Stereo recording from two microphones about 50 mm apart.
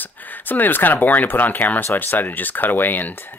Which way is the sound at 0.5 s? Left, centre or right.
Left.